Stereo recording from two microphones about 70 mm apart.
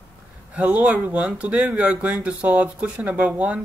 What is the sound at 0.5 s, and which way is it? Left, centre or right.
Speech, right.